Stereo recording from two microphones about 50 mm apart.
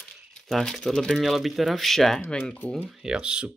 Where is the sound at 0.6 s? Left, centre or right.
Centre.